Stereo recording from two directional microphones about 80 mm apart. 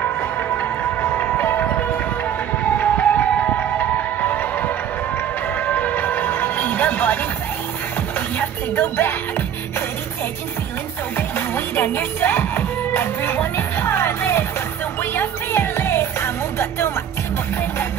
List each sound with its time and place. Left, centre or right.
0.6 s music: left
8.4 s music: left
11.1 s music: left